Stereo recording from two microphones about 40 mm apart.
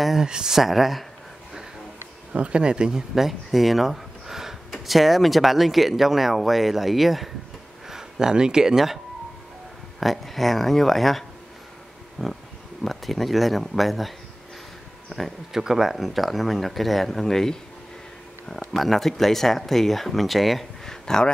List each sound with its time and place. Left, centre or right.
0.2 s speech: centre
0.6 s speech: centre
2.3 s speech: right
3.2 s a sound: centre
4.8 s speech: centre
7.9 s speech: centre
12.2 s a sound: centre
12.8 s speech: centre
15.5 s speech: centre
18.7 s speech: centre
20.8 s a sound: centre